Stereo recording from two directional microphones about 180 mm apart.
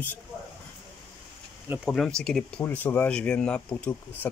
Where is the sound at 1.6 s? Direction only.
10° right (ahead or behind).